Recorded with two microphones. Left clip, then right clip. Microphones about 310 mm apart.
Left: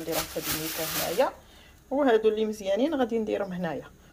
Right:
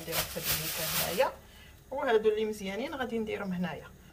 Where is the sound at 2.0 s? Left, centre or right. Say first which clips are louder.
Left 3 dB; left.